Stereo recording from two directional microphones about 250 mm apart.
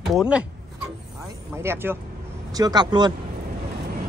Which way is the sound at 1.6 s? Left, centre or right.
Centre.